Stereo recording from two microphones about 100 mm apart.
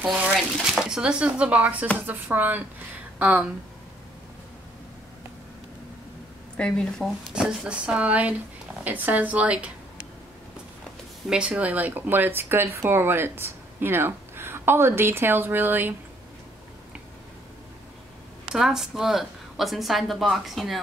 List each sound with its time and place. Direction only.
0.0 s speech: 5° right (ahead or behind)
6.5 s a woman's voice: 5° left (ahead or behind)
7.3 s speech: 10° right (ahead or behind)
11.2 s speech: 10° right (ahead or behind)
18.5 s a woman's voice: 5° right (ahead or behind)